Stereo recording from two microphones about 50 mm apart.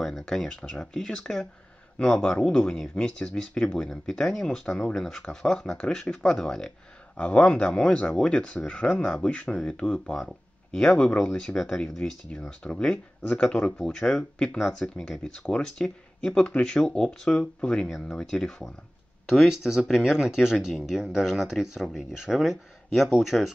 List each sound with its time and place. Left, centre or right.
0.6 s speech: centre
7.2 s speech: left
8.5 s speech: left
10.8 s speech: centre
12.3 s speech: left
12.8 s speech: centre
13.9 s speech: centre
19.9 s speech: centre